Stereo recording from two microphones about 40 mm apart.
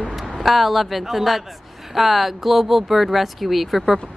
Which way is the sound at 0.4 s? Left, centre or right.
Centre.